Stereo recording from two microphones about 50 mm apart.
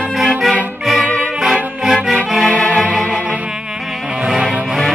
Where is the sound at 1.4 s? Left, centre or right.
Centre.